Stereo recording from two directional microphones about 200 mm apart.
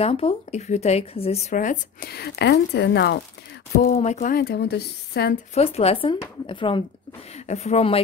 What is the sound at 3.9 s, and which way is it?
A woman's voice, 35° left (ahead or behind).